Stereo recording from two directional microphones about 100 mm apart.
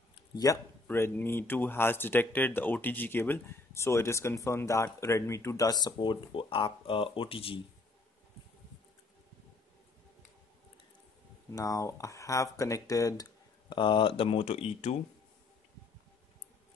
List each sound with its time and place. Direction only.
0.5 s speech: 35° left (ahead or behind)
0.8 s speech: 20° left (ahead or behind); by 7.6 s 65° left (ahead or behind)
11.5 s speech: 35° left (ahead or behind)
13.7 s speech: 55° left (ahead or behind); by 15.0 s 90° left